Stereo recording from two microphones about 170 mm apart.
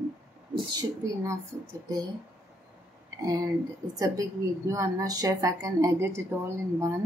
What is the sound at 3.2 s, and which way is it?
A woman's voice, 20° right (ahead or behind).